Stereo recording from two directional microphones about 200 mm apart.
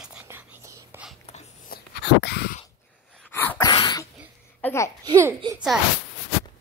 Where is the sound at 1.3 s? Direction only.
35° left (ahead or behind).